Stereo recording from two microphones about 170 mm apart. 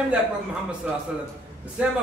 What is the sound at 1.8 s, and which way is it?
Speech, 10° right (ahead or behind).